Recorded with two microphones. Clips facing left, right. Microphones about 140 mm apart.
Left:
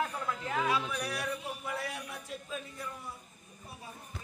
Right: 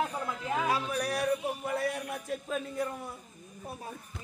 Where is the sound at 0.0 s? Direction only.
20° right (ahead or behind).